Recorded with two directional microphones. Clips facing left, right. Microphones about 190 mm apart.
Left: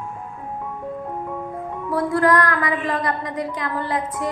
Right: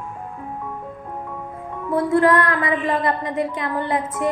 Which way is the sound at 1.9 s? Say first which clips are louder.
Right 2 dB; 25° right (ahead or behind).